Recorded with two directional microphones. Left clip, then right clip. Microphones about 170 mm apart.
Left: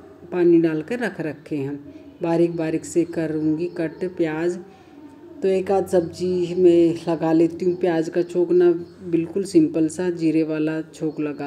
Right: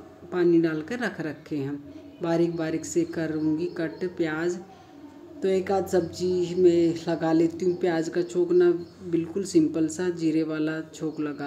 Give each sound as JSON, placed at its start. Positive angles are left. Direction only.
{"t": 0.3, "sound": "speech", "side_deg": 10}